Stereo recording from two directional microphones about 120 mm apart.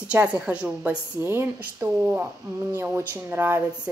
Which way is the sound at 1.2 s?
20° right (ahead or behind).